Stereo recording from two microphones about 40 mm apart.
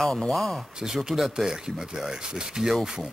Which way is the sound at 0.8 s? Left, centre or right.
Centre.